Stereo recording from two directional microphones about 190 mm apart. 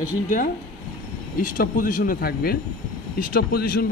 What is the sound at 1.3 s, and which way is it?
Speech, 45° left (ahead or behind).